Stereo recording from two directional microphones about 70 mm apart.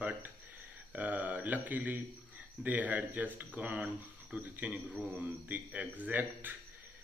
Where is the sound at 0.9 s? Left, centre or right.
Right.